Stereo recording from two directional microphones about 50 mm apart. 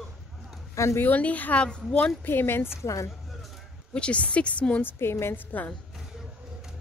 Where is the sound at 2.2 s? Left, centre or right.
Left.